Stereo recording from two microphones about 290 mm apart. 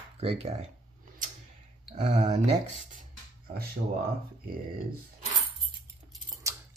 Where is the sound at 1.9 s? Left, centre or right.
Right.